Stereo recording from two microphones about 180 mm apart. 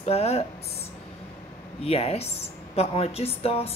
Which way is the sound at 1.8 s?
35° left (ahead or behind).